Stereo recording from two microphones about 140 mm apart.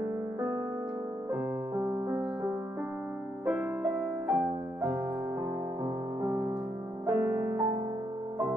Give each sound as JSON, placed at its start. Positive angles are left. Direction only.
{"t": 1.3, "sound": "music", "side_deg": -15}
{"t": 3.4, "sound": "music", "side_deg": -5}
{"t": 6.2, "sound": "music", "side_deg": -20}